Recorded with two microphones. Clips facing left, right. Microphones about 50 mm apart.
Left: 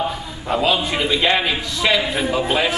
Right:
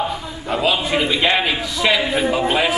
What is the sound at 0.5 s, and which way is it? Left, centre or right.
A man's voice, centre.